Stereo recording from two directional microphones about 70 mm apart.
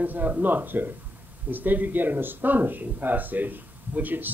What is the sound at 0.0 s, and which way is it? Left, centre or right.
Speech, right.